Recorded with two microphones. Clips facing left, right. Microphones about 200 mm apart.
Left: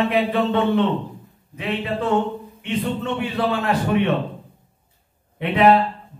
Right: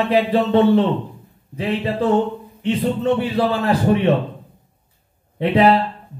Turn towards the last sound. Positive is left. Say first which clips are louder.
# right 2 dB
turn(degrees=-35)  # may be behind; listen again after turning